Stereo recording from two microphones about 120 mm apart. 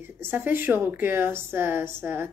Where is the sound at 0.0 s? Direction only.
20° right (ahead or behind).